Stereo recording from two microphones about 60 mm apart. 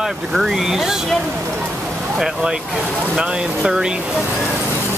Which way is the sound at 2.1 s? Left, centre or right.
Centre.